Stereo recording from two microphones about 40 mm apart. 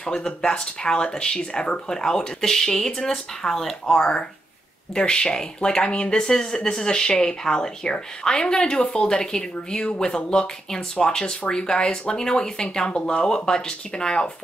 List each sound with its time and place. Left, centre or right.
0.0 s speech: centre
4.9 s speech: left